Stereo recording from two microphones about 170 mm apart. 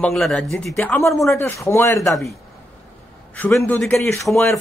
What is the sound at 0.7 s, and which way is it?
A man's voice, 15° left (ahead or behind).